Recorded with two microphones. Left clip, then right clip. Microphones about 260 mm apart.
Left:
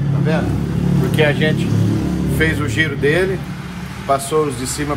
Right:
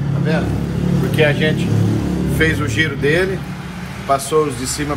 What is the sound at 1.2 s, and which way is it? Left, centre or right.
Speech, left.